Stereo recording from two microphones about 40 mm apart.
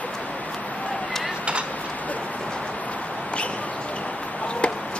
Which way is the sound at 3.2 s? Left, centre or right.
Left.